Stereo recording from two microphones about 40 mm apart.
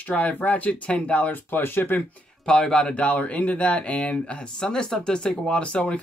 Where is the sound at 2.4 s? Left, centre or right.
Left.